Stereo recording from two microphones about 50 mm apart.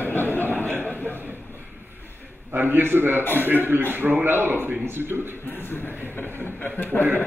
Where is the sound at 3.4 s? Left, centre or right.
Right.